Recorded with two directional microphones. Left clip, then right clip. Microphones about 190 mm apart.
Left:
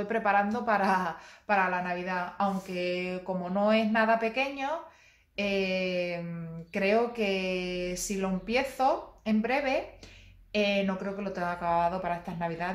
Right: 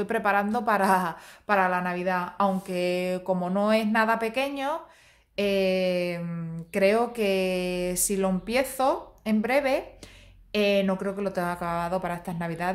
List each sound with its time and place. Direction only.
0.0 s a woman's voice: 55° right (ahead or behind)